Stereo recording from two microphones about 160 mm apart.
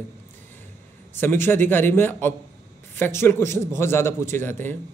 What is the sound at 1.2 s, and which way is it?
Speech, 15° left (ahead or behind).